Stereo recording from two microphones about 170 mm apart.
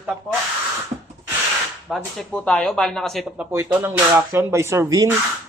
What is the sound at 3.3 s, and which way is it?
Speech, 15° right (ahead or behind).